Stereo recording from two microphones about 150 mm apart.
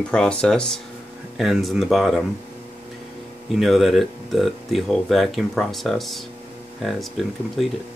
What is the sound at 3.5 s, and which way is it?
Speech, centre (ahead or behind).